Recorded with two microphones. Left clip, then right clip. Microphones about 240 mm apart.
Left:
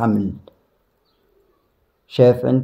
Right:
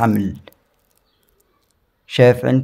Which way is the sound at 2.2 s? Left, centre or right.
Right.